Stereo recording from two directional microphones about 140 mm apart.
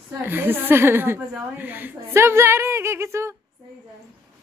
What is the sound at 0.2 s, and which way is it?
A woman's voice, 15° right (ahead or behind).